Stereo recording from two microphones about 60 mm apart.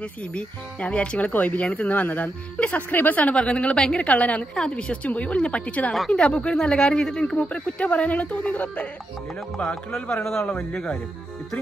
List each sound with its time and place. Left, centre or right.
0.3 s speech: centre
9.8 s a man's voice: centre